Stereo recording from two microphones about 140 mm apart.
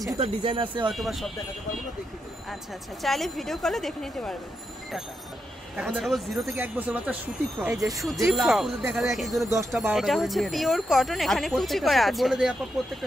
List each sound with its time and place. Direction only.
0.2 s speech: 40° right (ahead or behind)
0.9 s speech: centre (ahead or behind)
3.0 s speech: centre (ahead or behind)
5.8 s speech: 5° right (ahead or behind)
6.4 s speech: 15° right (ahead or behind)
8.3 s speech: centre (ahead or behind)